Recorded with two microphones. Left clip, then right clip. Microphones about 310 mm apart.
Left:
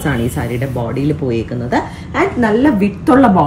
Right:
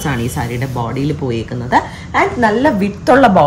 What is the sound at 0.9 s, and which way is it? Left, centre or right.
A woman's voice, right.